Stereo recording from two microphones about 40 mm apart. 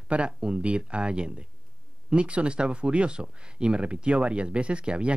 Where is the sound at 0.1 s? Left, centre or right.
Right.